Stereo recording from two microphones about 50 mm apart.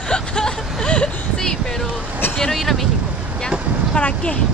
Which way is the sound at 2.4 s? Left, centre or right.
Centre.